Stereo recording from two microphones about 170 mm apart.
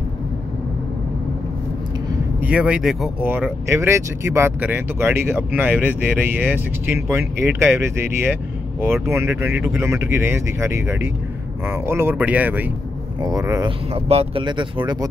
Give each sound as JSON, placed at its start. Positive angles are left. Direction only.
{"t": 2.4, "sound": "speech", "side_deg": -5}
{"t": 13.2, "sound": "speech", "side_deg": -20}
{"t": 13.7, "sound": "speech", "side_deg": -35}